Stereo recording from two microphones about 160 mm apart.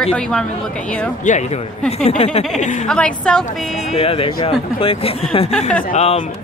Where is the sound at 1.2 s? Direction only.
45° left (ahead or behind).